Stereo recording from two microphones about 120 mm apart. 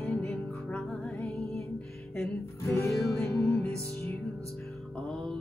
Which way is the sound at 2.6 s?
25° left (ahead or behind).